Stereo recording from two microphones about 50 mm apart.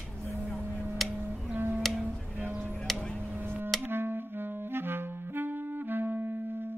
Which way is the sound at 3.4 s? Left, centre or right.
Right.